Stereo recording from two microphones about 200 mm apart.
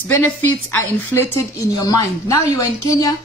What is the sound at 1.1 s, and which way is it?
Speech, 10° left (ahead or behind).